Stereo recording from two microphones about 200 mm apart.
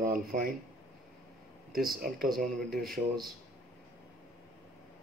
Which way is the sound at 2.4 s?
50° right (ahead or behind).